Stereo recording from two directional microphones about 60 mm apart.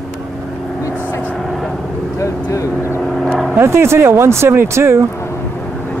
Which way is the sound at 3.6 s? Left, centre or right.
Right.